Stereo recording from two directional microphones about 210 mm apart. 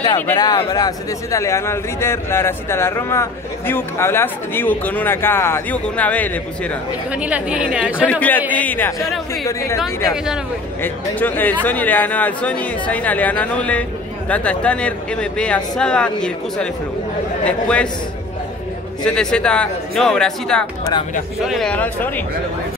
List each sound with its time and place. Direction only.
0.0 s speech: 20° left (ahead or behind)
7.1 s speech: 5° right (ahead or behind)
8.1 s speech: 5° left (ahead or behind)
10.8 s speech: 10° left (ahead or behind)
19.0 s speech: 5° left (ahead or behind)